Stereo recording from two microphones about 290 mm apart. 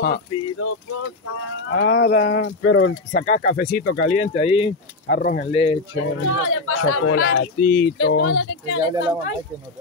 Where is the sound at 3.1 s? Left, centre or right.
Left.